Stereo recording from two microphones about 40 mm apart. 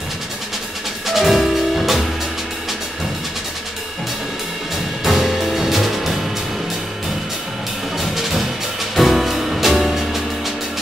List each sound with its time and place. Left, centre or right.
1.0 s music: centre
5.0 s music: centre
8.0 s music: centre